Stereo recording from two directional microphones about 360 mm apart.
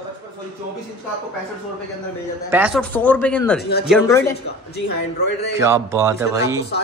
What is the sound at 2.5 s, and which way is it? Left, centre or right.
A man's voice, centre.